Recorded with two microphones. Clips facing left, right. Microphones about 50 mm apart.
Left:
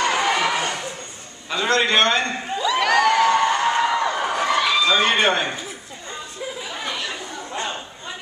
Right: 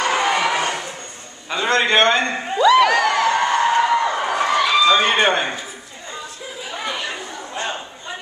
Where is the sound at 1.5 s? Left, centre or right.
Centre.